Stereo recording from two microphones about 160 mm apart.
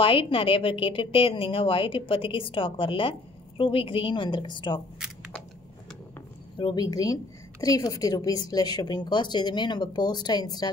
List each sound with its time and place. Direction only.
0.0 s a woman's voice: 35° left (ahead or behind)
6.6 s a woman's voice: 25° left (ahead or behind)